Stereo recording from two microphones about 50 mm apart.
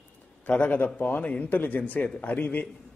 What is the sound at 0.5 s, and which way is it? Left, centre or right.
A man's voice, left.